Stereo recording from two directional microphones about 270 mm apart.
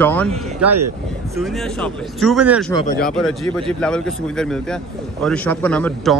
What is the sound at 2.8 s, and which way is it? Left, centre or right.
Speech, left.